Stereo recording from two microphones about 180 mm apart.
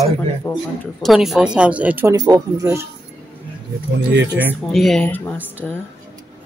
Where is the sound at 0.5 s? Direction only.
15° left (ahead or behind).